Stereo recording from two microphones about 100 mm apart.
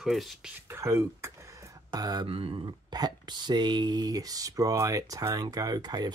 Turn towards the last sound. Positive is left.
turn(degrees=-40)  # may be behind; listen again after turning